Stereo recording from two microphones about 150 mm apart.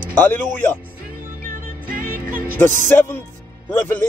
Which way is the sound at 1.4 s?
65° right (ahead or behind).